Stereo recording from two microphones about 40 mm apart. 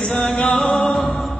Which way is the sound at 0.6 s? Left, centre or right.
Centre.